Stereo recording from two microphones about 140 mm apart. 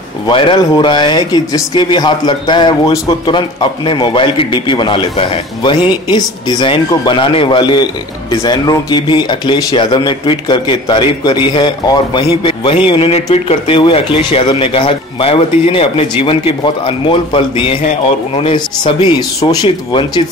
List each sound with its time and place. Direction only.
0.3 s speech: 35° left (ahead or behind)